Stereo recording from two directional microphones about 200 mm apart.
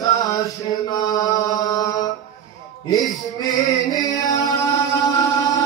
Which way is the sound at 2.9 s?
20° left (ahead or behind).